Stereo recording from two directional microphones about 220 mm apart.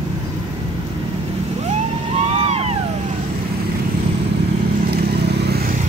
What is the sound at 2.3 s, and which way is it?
Vehicle, 30° right (ahead or behind).